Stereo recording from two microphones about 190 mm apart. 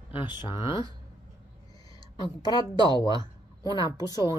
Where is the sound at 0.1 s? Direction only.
25° left (ahead or behind).